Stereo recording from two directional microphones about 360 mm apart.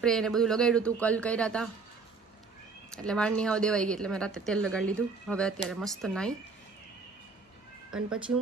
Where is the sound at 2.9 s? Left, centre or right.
Centre.